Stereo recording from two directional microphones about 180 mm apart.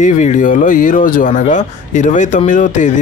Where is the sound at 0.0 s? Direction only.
45° left (ahead or behind).